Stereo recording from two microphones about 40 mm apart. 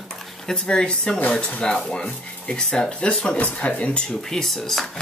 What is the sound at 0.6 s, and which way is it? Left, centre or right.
Speech, left.